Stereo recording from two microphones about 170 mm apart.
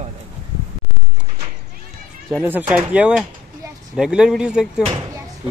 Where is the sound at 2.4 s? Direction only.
10° right (ahead or behind).